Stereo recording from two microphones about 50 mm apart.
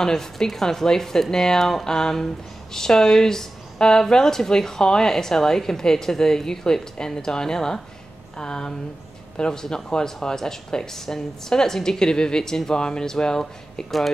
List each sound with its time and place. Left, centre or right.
0.0 s speech: centre